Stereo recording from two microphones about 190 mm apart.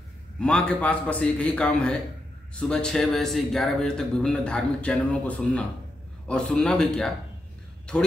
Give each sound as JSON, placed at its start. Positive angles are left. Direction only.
{"t": 0.4, "sound": "speech", "side_deg": 5}